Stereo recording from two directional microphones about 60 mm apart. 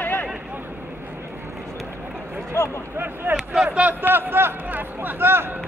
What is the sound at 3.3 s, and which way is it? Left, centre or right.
Speech, centre.